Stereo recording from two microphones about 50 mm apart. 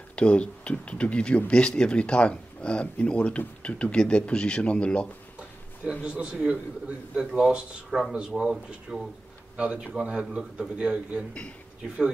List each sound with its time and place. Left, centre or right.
0.1 s speech: left
6.0 s a man's voice: right
7.2 s a man's voice: centre